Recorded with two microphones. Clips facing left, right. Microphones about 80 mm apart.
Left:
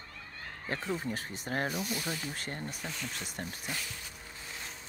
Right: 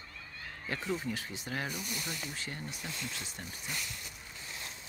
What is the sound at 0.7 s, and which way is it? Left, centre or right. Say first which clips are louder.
Speech: left 1 dB; left.